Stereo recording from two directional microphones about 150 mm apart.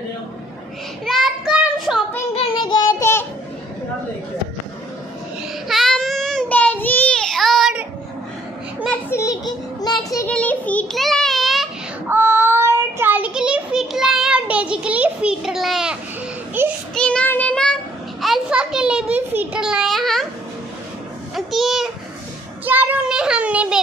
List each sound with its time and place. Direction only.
1.0 s child singing: centre (ahead or behind)
2.3 s child singing: 35° left (ahead or behind)
3.0 s child singing: 15° left (ahead or behind)
5.7 s child singing: centre (ahead or behind)
9.1 s a sound: 20° left (ahead or behind)
10.2 s child singing: 10° left (ahead or behind)
12.1 s child singing: 15° right (ahead or behind)
16.6 s child singing: 15° right (ahead or behind)
16.9 s child singing: 5° left (ahead or behind)
18.2 s a child's voice: 5° right (ahead or behind)
21.4 s a child's voice: centre (ahead or behind)